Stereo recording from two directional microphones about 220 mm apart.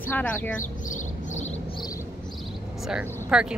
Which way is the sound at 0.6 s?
35° left (ahead or behind).